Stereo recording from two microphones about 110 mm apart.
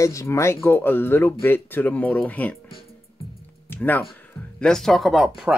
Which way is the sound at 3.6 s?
15° left (ahead or behind).